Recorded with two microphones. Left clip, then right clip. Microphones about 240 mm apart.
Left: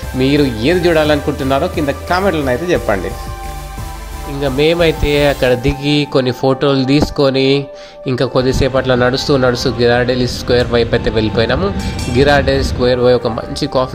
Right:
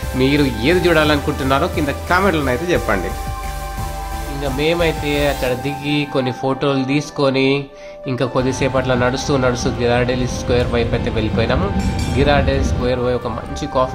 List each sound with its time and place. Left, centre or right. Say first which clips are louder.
0.2 s speech: left 3 dB; centre
4.4 s speech: left 5 dB; left